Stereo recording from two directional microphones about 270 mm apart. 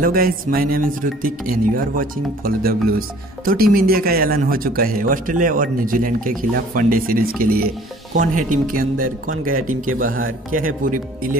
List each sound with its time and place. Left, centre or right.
0.0 s a man's voice: right